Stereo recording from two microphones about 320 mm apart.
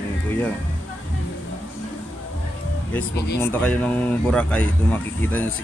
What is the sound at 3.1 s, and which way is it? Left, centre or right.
Speech, left.